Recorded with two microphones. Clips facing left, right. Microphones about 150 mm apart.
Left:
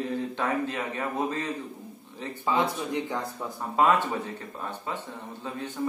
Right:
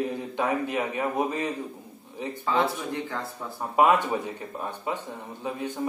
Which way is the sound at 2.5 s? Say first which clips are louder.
Even; 15° left (ahead or behind).